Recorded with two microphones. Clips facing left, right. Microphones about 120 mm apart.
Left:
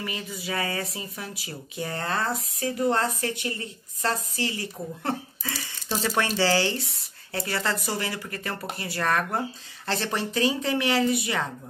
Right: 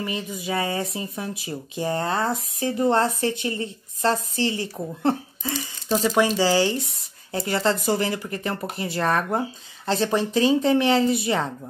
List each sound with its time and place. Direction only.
0.0 s speech: 20° right (ahead or behind)